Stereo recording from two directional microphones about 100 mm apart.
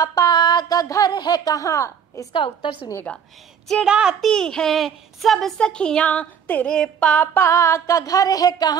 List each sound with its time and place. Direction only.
0.0 s music: 35° left (ahead or behind)
0.3 s a sound: 45° left (ahead or behind)
1.1 s music: 45° left (ahead or behind)
2.3 s a woman's voice: 60° left (ahead or behind)
3.8 s speech: 5° right (ahead or behind)
4.3 s speech: 5° left (ahead or behind)
7.3 s music: 30° left (ahead or behind)